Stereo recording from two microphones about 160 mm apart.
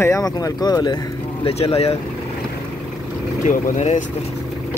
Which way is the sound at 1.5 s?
40° left (ahead or behind).